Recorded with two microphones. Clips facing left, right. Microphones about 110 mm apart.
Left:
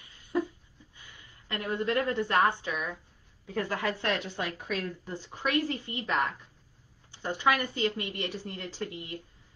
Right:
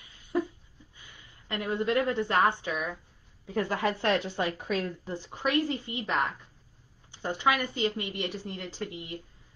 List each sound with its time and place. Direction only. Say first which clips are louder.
1.1 s a woman's voice: right 2 dB; 15° right (ahead or behind)